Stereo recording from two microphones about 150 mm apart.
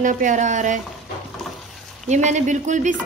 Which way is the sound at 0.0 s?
55° right (ahead or behind).